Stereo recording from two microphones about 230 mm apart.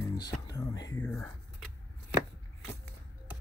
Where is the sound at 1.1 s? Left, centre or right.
Centre.